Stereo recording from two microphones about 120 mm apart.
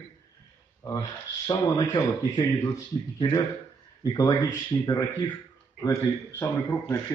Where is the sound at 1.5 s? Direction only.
35° left (ahead or behind).